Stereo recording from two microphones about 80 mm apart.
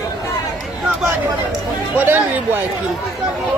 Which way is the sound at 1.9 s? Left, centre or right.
Right.